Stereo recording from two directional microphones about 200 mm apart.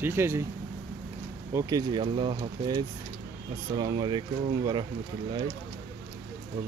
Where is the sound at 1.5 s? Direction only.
20° right (ahead or behind).